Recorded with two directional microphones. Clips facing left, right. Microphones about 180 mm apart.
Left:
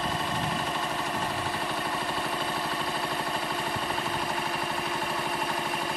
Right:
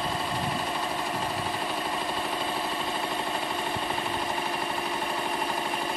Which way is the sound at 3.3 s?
Centre (ahead or behind).